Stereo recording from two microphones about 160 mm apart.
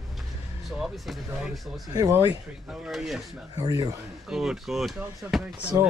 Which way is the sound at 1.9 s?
15° right (ahead or behind).